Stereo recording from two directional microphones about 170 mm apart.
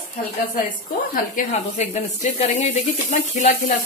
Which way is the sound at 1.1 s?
50° left (ahead or behind).